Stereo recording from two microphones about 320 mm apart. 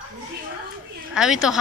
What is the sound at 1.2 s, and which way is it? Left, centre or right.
Speech, centre.